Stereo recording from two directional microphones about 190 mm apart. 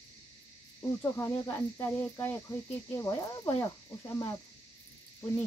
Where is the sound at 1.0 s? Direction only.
10° left (ahead or behind).